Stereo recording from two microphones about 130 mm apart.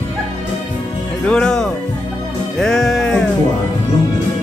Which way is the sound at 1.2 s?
5° left (ahead or behind).